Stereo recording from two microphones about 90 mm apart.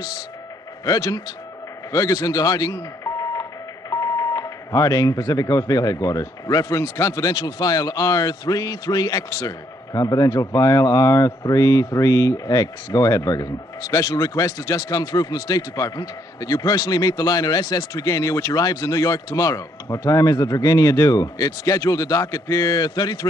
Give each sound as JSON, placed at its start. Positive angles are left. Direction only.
{"t": 0.8, "sound": "a man's voice", "side_deg": 45}